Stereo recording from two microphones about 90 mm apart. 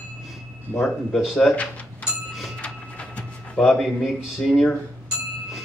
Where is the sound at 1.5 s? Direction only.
15° left (ahead or behind).